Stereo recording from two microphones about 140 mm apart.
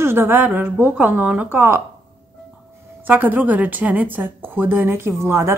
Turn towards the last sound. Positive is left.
turn(degrees=-20)  # may be behind; listen again after turning